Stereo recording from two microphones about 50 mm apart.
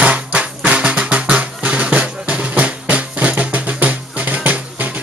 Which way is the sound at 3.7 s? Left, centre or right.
Right.